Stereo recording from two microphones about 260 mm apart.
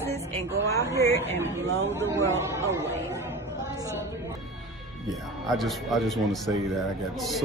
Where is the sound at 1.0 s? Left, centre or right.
Centre.